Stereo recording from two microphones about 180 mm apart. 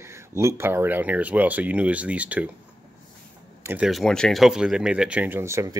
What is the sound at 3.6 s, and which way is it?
Speech, 5° right (ahead or behind).